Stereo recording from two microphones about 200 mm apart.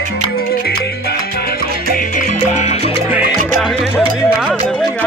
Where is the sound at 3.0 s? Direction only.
5° right (ahead or behind).